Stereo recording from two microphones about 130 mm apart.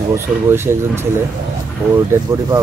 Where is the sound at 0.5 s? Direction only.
20° right (ahead or behind).